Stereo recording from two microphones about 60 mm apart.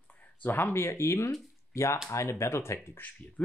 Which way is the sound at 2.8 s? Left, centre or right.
Left.